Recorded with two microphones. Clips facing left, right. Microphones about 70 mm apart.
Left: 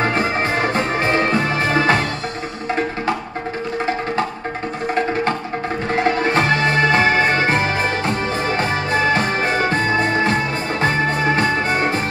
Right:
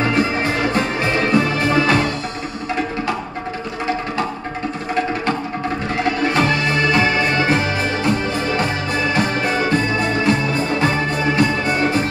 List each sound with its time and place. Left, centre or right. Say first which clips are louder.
0.1 s music: right 1 dB; left
6.0 s music: even; left
9.1 s music: even; left
11.3 s music: even; left